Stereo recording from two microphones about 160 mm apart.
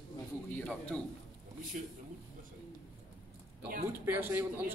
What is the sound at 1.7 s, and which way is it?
Speech, 60° right (ahead or behind).